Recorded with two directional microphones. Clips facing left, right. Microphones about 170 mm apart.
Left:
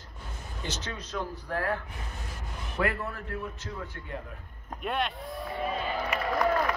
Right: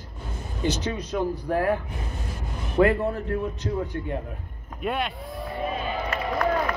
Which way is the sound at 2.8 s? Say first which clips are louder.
Right 10 dB; 20° right (ahead or behind).